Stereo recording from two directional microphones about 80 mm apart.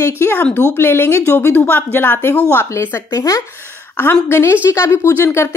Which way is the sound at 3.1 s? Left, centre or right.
Left.